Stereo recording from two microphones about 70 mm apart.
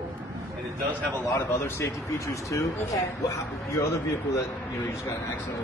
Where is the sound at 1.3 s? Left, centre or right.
Left.